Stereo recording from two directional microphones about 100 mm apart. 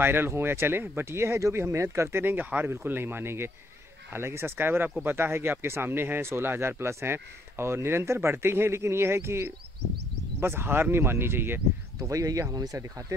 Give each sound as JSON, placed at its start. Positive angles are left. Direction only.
{"t": 0.0, "sound": "speech", "side_deg": -20}
{"t": 12.0, "sound": "speech", "side_deg": -35}